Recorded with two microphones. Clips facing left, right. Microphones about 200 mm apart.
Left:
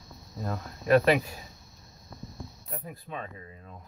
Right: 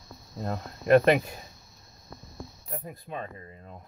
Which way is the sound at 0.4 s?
25° right (ahead or behind).